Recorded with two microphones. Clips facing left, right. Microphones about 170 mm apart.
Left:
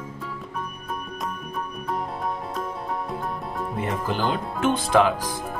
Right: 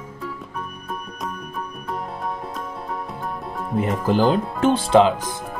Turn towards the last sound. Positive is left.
turn(degrees=-25)  # may be behind; listen again after turning